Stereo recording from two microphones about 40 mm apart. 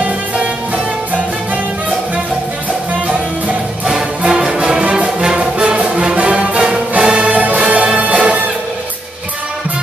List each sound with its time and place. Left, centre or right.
4.3 s music: centre
4.9 s brass instrument: right
5.7 s music: right